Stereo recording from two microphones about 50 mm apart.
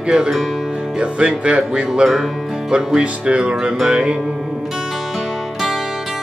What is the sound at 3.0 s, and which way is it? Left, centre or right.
Speech, right.